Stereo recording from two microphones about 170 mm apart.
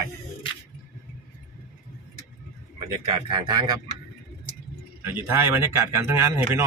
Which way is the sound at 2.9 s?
25° right (ahead or behind).